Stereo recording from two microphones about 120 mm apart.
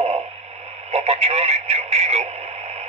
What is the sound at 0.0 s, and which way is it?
Speech, 60° right (ahead or behind).